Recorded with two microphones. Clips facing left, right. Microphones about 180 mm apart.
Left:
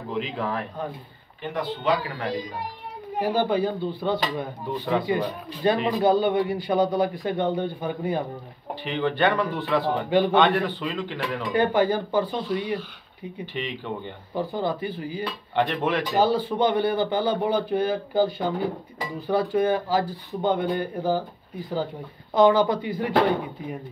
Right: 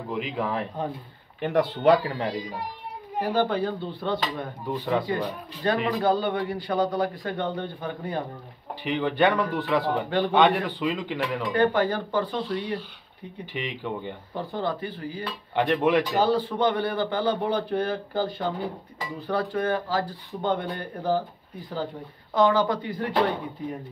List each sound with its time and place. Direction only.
0.1 s speech: 10° right (ahead or behind)
0.5 s speech: 25° right (ahead or behind)
1.4 s speech: 65° right (ahead or behind)
3.2 s a man's voice: 5° left (ahead or behind)
8.8 s speech: 10° right (ahead or behind)
9.8 s a man's voice: 10° left (ahead or behind)
10.3 s speech: 10° right (ahead or behind)
11.5 s a man's voice: 10° left (ahead or behind)
13.5 s speech: 10° right (ahead or behind)
14.3 s a man's voice: 5° left (ahead or behind)
15.5 s speech: 10° right (ahead or behind)
16.2 s a man's voice: 5° left (ahead or behind)
22.3 s a man's voice: 15° left (ahead or behind)